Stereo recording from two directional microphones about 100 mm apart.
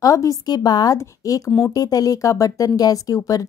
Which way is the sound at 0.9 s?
30° left (ahead or behind).